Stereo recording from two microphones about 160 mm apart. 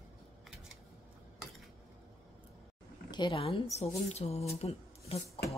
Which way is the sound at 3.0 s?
30° left (ahead or behind).